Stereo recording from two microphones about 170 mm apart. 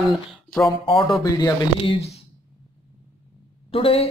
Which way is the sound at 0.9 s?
30° left (ahead or behind).